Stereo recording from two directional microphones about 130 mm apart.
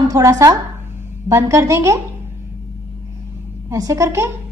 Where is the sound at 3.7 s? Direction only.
25° right (ahead or behind).